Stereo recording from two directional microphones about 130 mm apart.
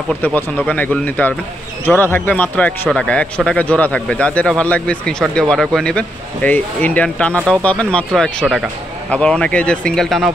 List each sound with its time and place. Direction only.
0.2 s a man's voice: 15° left (ahead or behind)